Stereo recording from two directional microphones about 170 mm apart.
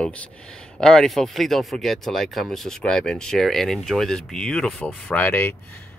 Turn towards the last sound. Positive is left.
turn(degrees=10)  # may be behind; listen again after turning